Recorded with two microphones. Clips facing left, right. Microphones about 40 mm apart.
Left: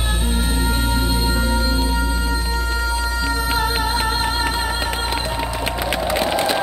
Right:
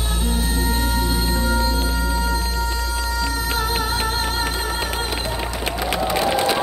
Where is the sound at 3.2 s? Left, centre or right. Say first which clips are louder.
Left 3 dB; left.